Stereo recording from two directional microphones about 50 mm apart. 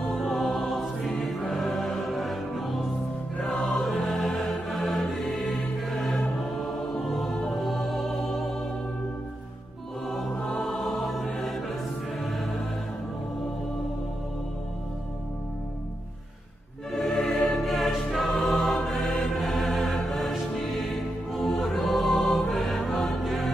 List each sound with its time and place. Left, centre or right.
0.1 s music: centre
10.0 s music: centre
10.3 s music: centre
10.6 s music: centre
16.9 s music: centre